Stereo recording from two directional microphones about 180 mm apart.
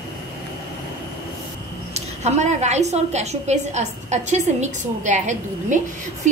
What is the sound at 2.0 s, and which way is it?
A woman's voice, 40° right (ahead or behind).